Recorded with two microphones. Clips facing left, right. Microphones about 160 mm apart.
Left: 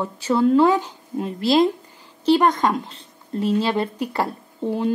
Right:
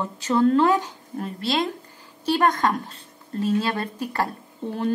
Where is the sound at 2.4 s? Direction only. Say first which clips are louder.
Left 2 dB; 20° left (ahead or behind).